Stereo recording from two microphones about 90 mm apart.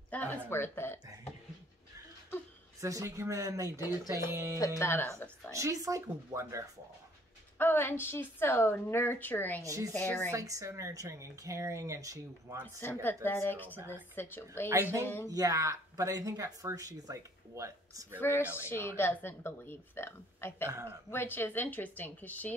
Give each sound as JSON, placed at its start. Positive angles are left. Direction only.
{"t": 0.1, "sound": "a sound", "side_deg": 20}
{"t": 0.5, "sound": "a woman's voice", "side_deg": 25}
{"t": 2.8, "sound": "speech", "side_deg": -35}
{"t": 4.6, "sound": "speech", "side_deg": 35}
{"t": 5.5, "sound": "speech", "side_deg": -40}
{"t": 7.5, "sound": "a woman's voice", "side_deg": 25}
{"t": 9.6, "sound": "speech", "side_deg": -40}
{"t": 9.9, "sound": "a woman's voice", "side_deg": 25}
{"t": 10.3, "sound": "speech", "side_deg": -40}
{"t": 12.8, "sound": "a woman's voice", "side_deg": 25}
{"t": 14.7, "sound": "speech", "side_deg": -30}
{"t": 18.2, "sound": "a woman's voice", "side_deg": 30}